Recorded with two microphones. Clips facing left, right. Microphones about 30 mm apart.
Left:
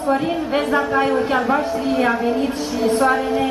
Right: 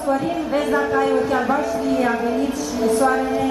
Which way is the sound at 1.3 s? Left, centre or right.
Left.